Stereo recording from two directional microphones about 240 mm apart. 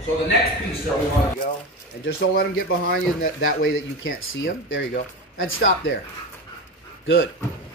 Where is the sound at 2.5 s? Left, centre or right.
Left.